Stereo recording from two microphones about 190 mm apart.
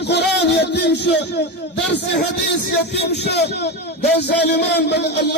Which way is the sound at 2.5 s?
60° left (ahead or behind).